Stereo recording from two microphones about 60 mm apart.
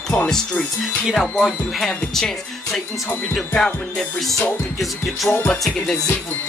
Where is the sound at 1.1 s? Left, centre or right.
Centre.